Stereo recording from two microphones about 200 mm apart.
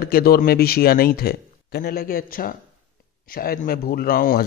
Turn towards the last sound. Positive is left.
turn(degrees=45)  # may be behind; listen again after turning